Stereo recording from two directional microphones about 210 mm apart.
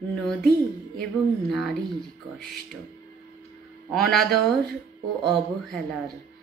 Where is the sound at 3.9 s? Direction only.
Centre (ahead or behind).